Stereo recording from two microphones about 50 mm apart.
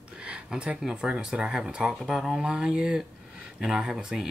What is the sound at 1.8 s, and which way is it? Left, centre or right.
Speech, centre.